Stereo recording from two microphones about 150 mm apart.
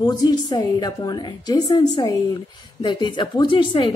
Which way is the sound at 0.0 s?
25° left (ahead or behind).